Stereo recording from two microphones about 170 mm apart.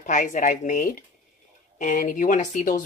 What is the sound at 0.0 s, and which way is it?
Speech, 50° left (ahead or behind).